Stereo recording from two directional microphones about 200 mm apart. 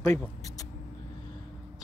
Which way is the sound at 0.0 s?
10° left (ahead or behind).